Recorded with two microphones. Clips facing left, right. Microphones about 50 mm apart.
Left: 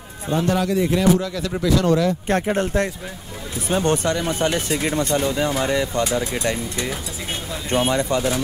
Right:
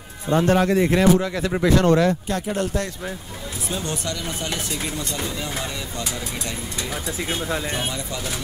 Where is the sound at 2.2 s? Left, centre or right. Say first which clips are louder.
Left 4 dB; left.